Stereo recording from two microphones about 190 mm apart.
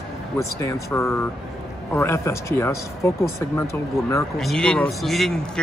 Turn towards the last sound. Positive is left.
turn(degrees=0)  # may be behind; listen again after turning